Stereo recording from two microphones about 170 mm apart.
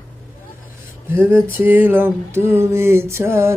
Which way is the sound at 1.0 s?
15° right (ahead or behind).